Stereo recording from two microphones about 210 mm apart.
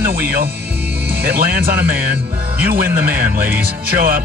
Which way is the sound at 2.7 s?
45° right (ahead or behind).